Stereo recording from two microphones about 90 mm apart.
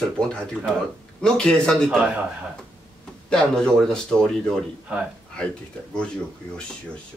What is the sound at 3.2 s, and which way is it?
Speech, 10° left (ahead or behind).